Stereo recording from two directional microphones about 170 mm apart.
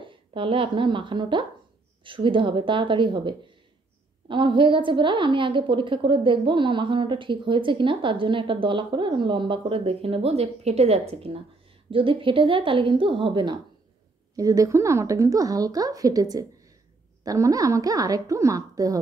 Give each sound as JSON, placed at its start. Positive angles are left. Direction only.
{"t": 0.0, "sound": "a woman's voice", "side_deg": -30}